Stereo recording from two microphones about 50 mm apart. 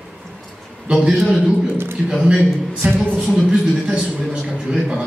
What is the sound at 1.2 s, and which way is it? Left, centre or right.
Speech, centre.